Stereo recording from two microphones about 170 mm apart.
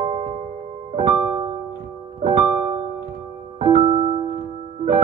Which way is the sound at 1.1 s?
20° right (ahead or behind).